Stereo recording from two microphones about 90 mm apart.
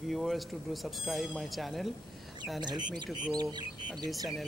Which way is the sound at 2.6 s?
55° right (ahead or behind).